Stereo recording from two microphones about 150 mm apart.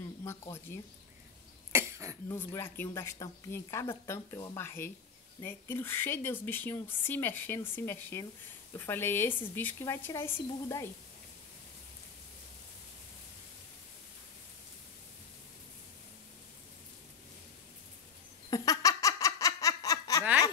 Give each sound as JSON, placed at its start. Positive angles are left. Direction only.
{"t": 0.2, "sound": "speech", "side_deg": 20}
{"t": 1.7, "sound": "cough", "side_deg": -20}
{"t": 2.2, "sound": "speech", "side_deg": 20}
{"t": 18.5, "sound": "laughter", "side_deg": 20}